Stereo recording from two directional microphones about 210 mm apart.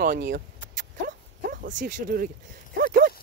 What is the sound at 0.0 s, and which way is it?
Dog, 50° right (ahead or behind).